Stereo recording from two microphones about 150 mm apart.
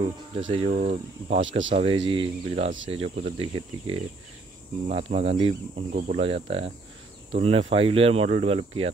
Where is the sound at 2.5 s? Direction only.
45° right (ahead or behind).